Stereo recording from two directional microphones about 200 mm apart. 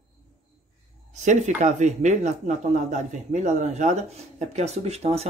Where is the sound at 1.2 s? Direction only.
35° right (ahead or behind).